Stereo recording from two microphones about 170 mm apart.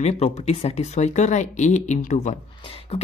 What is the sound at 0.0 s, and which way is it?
Speech, 40° left (ahead or behind).